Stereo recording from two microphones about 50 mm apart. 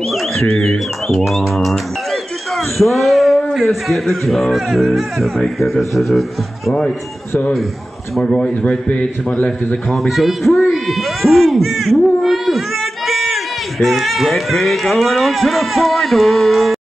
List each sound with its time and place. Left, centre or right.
0.1 s speech: centre
1.5 s a sound: centre
3.5 s speech: centre
8.2 s speech: centre
8.8 s a man's voice: left
9.8 s speech: centre
10.7 s owl: centre
13.7 s speech: centre